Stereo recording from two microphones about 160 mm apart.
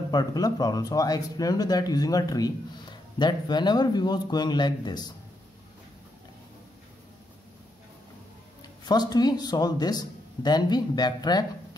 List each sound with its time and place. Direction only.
0.1 s a man's voice: 25° left (ahead or behind)
8.8 s a man's voice: 25° left (ahead or behind)